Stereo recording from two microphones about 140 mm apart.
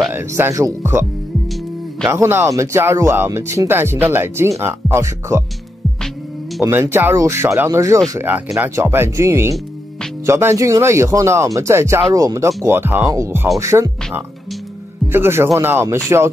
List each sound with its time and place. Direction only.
0.1 s speech: 15° right (ahead or behind)
2.0 s speech: 20° right (ahead or behind)
6.6 s speech: 15° right (ahead or behind)